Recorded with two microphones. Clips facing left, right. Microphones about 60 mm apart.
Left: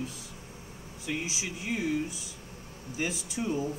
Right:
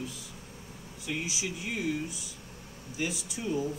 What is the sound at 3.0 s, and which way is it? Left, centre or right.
Speech, left.